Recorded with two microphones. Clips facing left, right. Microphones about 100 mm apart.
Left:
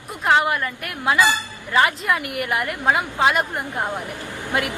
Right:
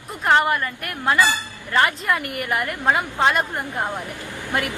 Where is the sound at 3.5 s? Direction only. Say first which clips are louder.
Even; 15° left (ahead or behind).